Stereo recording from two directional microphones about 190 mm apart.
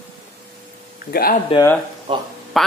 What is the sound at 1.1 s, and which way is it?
Speech, 50° left (ahead or behind).